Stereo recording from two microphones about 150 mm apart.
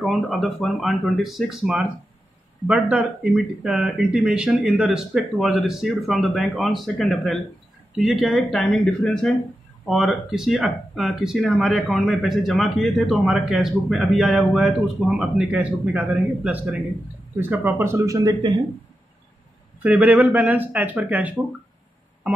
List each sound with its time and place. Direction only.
0.0 s speech: centre (ahead or behind); by 18.5 s 25° right (ahead or behind)
19.8 s speech: 10° right (ahead or behind)